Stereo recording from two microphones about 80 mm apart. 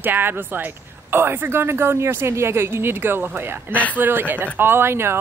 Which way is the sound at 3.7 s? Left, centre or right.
Centre.